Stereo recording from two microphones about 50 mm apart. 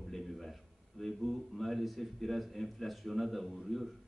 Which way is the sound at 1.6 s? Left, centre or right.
Centre.